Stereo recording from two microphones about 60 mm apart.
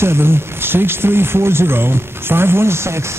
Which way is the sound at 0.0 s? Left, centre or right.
Right.